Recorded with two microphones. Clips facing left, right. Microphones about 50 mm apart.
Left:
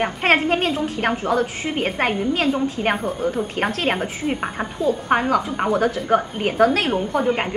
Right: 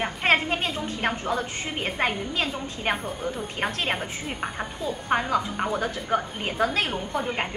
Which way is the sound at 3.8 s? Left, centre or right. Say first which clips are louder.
Left 7 dB; centre.